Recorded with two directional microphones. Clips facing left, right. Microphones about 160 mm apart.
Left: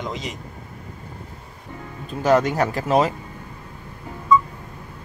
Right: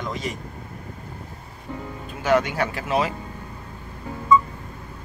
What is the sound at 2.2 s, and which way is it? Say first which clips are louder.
Speech: left 3 dB; 40° left (ahead or behind).